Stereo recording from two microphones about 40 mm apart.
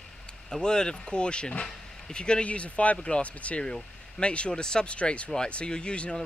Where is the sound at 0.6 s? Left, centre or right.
Left.